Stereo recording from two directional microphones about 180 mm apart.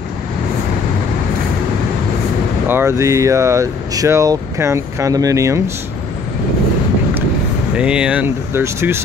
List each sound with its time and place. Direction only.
2.7 s speech: 15° right (ahead or behind)
7.7 s speech: 5° right (ahead or behind)